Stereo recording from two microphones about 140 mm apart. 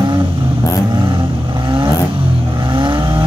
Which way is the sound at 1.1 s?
35° right (ahead or behind).